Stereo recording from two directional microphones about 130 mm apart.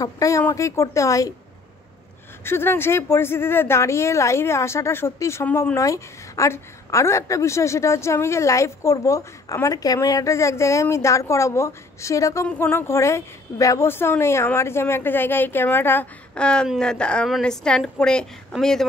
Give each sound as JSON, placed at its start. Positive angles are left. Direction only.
{"t": 0.0, "sound": "a woman's voice", "side_deg": 25}
{"t": 2.4, "sound": "a woman's voice", "side_deg": 20}